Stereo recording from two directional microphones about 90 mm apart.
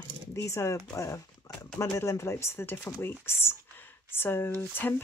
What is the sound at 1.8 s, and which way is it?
Speech, 35° left (ahead or behind).